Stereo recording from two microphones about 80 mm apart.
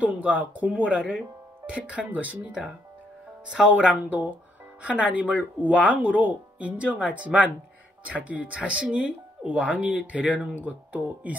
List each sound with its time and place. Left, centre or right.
0.0 s speech: centre